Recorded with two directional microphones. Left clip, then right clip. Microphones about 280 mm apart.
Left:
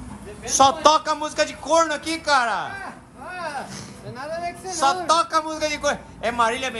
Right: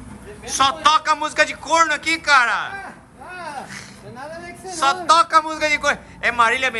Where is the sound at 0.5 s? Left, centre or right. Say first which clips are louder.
Even; centre.